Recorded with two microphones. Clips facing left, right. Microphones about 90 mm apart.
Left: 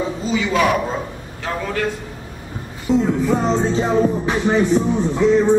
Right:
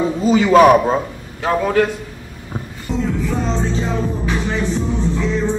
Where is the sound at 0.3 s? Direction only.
45° right (ahead or behind).